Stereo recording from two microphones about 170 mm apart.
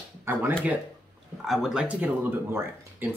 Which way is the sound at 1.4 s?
Centre (ahead or behind).